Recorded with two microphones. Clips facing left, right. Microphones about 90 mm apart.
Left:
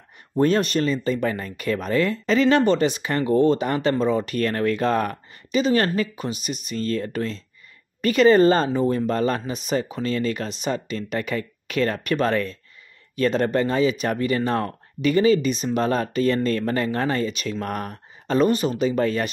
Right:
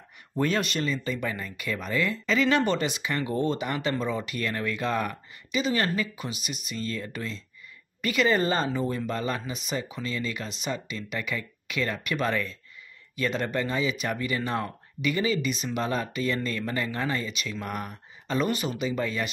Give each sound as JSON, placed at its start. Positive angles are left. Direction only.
{"t": 0.4, "sound": "speech", "side_deg": 40}